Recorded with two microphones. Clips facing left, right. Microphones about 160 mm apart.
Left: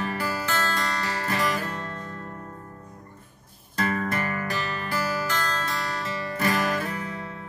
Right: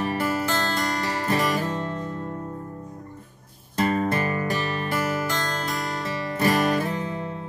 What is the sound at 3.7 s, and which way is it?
Music, 25° right (ahead or behind).